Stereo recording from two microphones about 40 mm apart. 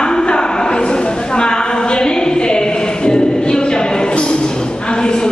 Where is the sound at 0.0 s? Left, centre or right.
Centre.